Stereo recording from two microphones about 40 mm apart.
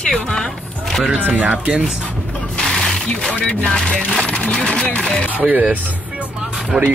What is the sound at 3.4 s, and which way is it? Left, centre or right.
Speech, left.